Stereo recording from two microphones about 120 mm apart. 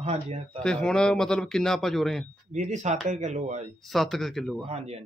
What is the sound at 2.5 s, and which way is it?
Speech, 85° right.